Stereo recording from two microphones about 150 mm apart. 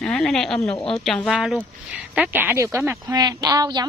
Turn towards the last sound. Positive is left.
turn(degrees=-25)  # may be behind; listen again after turning